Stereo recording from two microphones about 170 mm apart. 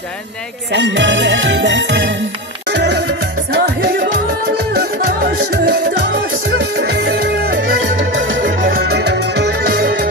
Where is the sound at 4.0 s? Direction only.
70° right (ahead or behind).